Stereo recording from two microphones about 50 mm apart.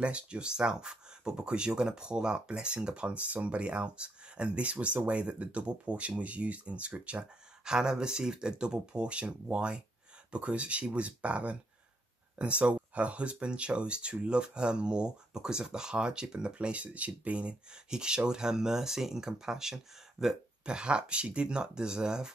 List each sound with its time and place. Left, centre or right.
0.0 s speech: right
20.6 s speech: centre